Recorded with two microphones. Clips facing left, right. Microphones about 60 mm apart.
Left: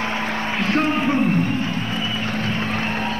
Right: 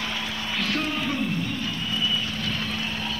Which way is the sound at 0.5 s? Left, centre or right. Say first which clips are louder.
Left 7 dB; left.